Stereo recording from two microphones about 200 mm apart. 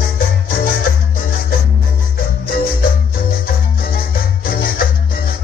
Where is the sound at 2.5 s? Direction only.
45° left (ahead or behind).